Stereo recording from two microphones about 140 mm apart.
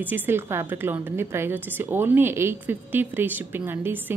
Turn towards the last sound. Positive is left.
turn(degrees=-15)  # may be behind; listen again after turning